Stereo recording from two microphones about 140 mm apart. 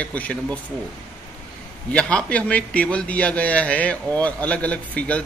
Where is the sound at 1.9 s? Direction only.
10° left (ahead or behind).